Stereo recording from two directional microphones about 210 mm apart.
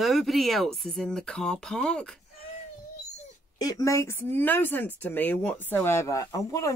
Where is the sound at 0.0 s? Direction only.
Centre (ahead or behind).